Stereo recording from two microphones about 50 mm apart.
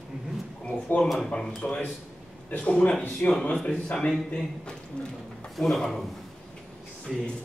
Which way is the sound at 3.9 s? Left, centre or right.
Centre.